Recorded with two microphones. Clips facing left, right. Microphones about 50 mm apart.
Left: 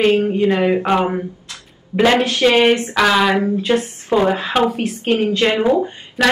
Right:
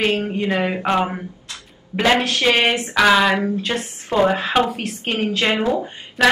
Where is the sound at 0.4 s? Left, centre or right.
Centre.